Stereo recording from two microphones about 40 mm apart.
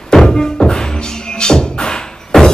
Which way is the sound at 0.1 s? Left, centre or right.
Centre.